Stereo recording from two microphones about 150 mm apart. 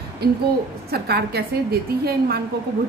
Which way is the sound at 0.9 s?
90° right.